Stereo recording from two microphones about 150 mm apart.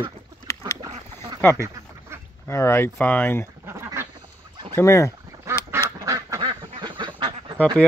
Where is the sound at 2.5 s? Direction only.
15° left (ahead or behind).